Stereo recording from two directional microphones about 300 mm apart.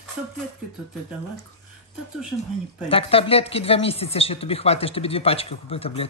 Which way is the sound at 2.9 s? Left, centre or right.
Centre.